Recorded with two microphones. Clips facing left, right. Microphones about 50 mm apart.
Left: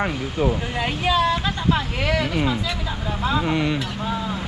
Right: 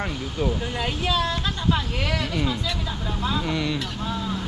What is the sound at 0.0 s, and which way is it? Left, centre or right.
Speech, left.